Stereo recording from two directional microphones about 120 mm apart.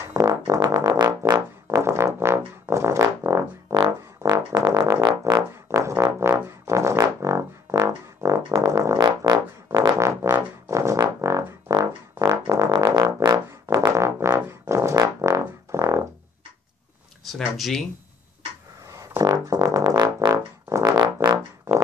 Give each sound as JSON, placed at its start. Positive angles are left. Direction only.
{"t": 0.0, "sound": "music", "side_deg": -30}
{"t": 6.4, "sound": "brass instrument", "side_deg": -25}
{"t": 9.8, "sound": "music", "side_deg": -25}
{"t": 17.6, "sound": "speech", "side_deg": 0}
{"t": 18.9, "sound": "music", "side_deg": -30}